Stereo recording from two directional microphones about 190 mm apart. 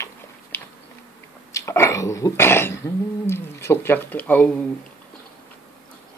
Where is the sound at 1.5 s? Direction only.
15° left (ahead or behind).